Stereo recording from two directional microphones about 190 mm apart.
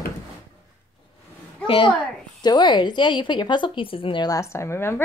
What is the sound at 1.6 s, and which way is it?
A woman's voice, 25° left (ahead or behind).